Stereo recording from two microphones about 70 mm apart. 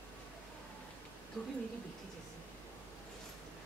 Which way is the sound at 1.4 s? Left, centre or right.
Centre.